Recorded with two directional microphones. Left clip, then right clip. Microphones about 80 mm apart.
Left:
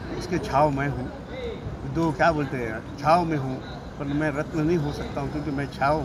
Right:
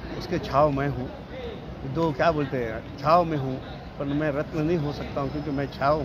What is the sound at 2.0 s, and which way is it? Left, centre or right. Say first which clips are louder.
Speech: left 1 dB; right.